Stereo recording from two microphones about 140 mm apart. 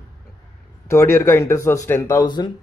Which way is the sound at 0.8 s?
20° left (ahead or behind).